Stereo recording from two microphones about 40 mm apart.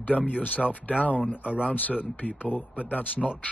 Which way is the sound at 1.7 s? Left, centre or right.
Left.